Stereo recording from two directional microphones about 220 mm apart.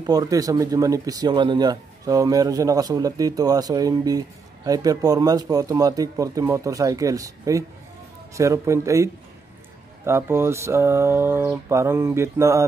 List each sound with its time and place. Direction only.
0.0 s speech: 15° right (ahead or behind)